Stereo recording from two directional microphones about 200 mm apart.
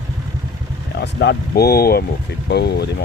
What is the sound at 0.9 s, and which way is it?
Speech, 55° left (ahead or behind).